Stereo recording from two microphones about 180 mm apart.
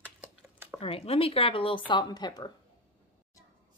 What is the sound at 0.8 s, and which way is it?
Speech, 30° left (ahead or behind).